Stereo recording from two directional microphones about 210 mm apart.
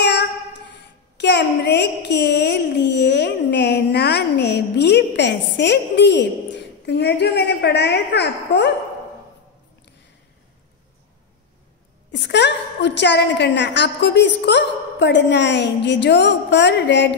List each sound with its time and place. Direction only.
0.0 s a sound: 55° left (ahead or behind)
1.1 s a woman's voice: 55° left (ahead or behind)
12.1 s a woman's voice: 55° left (ahead or behind)